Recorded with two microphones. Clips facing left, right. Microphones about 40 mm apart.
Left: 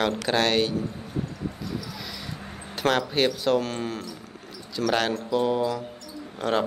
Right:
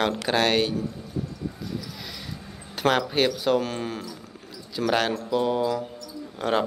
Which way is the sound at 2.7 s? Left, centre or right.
Centre.